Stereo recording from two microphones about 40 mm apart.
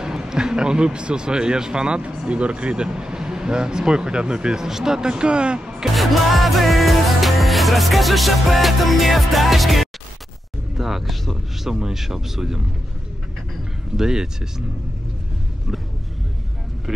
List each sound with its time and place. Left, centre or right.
0.0 s speech: centre
5.9 s music: centre
10.8 s speech: centre
13.9 s speech: centre